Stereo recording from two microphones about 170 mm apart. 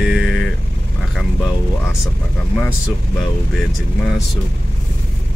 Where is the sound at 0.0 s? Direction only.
Centre (ahead or behind).